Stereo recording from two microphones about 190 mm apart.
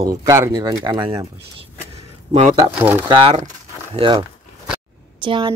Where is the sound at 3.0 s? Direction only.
25° right (ahead or behind).